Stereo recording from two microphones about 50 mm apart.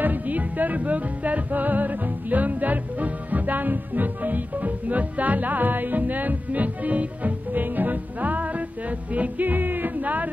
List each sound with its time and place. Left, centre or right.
0.0 s music: right